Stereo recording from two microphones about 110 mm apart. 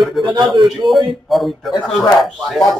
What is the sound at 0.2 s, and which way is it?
Speech, 40° right (ahead or behind).